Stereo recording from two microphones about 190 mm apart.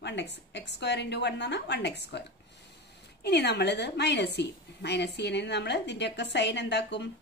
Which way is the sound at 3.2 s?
60° left (ahead or behind).